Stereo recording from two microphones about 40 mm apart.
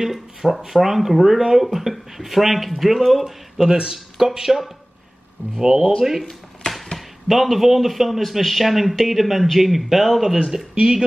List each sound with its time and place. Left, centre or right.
0.0 s speech: centre
7.0 s speech: centre